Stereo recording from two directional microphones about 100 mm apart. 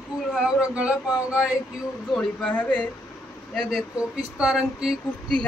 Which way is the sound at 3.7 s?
10° right (ahead or behind).